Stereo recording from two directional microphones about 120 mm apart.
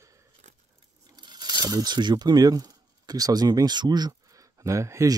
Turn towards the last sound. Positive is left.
turn(degrees=-25)  # may be behind; listen again after turning